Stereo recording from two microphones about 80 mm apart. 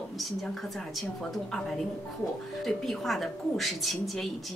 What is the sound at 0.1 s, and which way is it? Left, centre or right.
Speech, centre.